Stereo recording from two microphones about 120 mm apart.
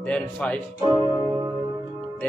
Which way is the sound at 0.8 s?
45° left (ahead or behind).